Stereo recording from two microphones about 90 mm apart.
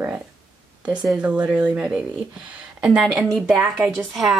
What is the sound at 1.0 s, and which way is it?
Speech, 10° right (ahead or behind).